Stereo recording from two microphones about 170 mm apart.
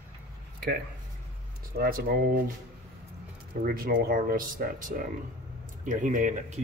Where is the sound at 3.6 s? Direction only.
60° right (ahead or behind).